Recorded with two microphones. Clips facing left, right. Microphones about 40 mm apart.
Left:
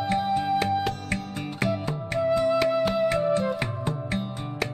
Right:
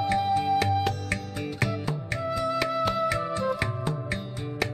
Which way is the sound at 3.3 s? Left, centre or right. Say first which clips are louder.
Left 3 dB; centre.